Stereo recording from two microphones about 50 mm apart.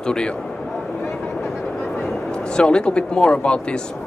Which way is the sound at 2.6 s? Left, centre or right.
Centre.